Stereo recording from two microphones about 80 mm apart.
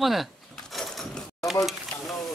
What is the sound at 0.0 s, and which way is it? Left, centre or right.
Speech, centre.